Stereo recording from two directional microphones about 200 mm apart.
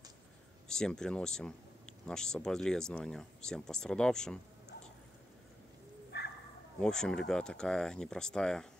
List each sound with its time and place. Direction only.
0.7 s speech: 5° left (ahead or behind)
6.1 s bow-wow: 55° left (ahead or behind)
6.8 s speech: 5° left (ahead or behind)